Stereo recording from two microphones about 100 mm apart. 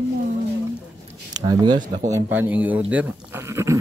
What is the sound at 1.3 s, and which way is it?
Speech, 45° right (ahead or behind).